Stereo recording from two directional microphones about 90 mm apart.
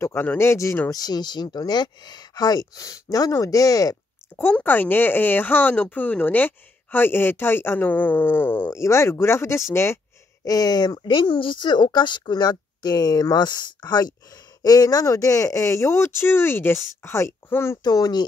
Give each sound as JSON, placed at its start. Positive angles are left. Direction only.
{"t": 0.0, "sound": "speech", "side_deg": 25}
{"t": 0.8, "sound": "speech", "side_deg": 45}
{"t": 4.4, "sound": "speech", "side_deg": 20}
{"t": 8.6, "sound": "speech", "side_deg": 35}
{"t": 10.4, "sound": "speech", "side_deg": 45}
{"t": 17.8, "sound": "speech", "side_deg": 45}